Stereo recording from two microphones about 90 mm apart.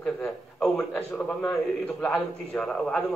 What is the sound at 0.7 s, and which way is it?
A man's voice, 15° left (ahead or behind).